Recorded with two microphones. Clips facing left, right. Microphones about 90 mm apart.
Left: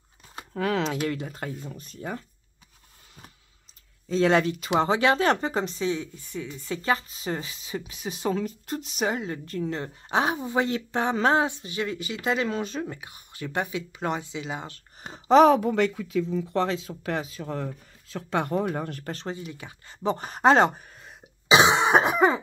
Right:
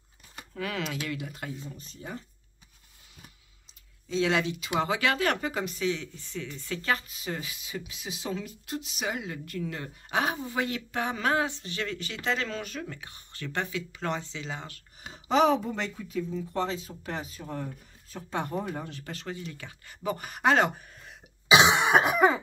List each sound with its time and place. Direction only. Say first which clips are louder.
0.4 s speech: left 7 dB; 40° left (ahead or behind)
1.8 s speech: left 5 dB; 60° left (ahead or behind)
4.1 s speech: left 5 dB; 45° left (ahead or behind)
4.7 s speech: left 5 dB; 30° left (ahead or behind)
6.1 s speech: left 3 dB; 15° left (ahead or behind)
13.0 s speech: left 3 dB; 15° left (ahead or behind)
15.0 s speech: left 8 dB; 40° left (ahead or behind)
15.4 s speech: left 6 dB; 65° left (ahead or behind); by 19.1 s 50° left (ahead or behind)
19.1 s speech: left 4 dB; 30° left (ahead or behind)
19.4 s speech: left 2 dB; 20° left (ahead or behind)
21.5 s cough: left 2 dB; 20° left (ahead or behind)